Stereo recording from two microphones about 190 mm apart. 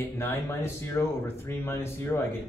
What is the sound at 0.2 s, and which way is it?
Speech, 15° left (ahead or behind).